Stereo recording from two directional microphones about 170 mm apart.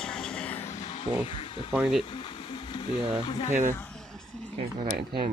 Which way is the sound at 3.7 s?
10° left (ahead or behind).